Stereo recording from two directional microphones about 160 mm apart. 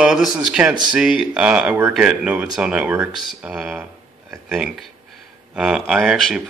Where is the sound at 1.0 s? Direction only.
5° right (ahead or behind).